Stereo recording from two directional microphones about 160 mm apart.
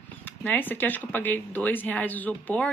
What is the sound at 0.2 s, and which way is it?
Speech, 10° left (ahead or behind).